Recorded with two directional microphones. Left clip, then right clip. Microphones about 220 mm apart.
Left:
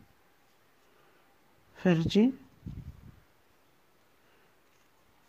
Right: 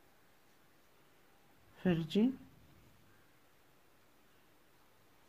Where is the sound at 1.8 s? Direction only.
25° left (ahead or behind).